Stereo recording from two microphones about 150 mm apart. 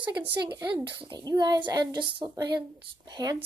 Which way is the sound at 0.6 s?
20° right (ahead or behind).